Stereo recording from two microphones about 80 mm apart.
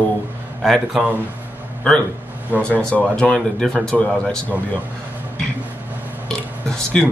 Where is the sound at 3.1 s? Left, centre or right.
Centre.